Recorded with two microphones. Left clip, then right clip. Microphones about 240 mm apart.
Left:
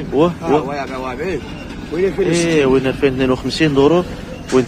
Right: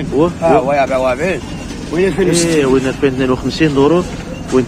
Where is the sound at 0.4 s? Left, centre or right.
Right.